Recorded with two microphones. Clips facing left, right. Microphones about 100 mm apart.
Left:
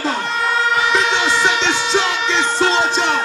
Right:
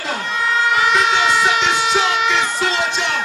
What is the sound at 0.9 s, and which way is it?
Emergency vehicle, 30° left (ahead or behind).